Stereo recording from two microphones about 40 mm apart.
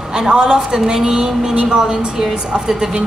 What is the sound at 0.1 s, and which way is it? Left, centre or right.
A woman's voice, centre.